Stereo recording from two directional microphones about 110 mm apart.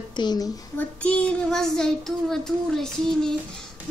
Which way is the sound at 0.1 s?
40° left (ahead or behind).